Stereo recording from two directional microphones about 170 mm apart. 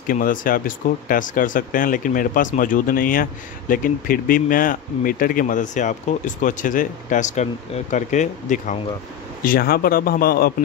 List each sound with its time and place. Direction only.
0.0 s speech: 55° left (ahead or behind)
9.4 s speech: 60° left (ahead or behind)